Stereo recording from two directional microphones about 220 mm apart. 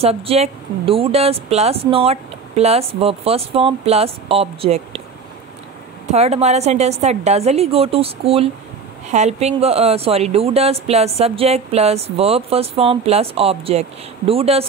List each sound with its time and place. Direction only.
0.0 s speech: 25° right (ahead or behind)
6.1 s speech: 30° right (ahead or behind)